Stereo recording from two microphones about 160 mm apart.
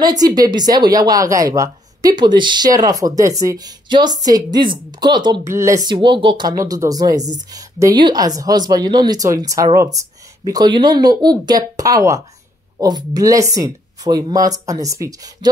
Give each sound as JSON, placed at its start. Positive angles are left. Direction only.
{"t": 0.0, "sound": "speech", "side_deg": -25}
{"t": 5.9, "sound": "speech", "side_deg": -30}